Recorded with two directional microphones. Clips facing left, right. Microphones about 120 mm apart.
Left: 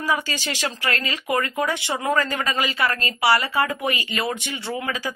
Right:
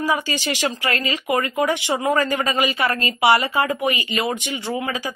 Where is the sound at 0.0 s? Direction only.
15° right (ahead or behind).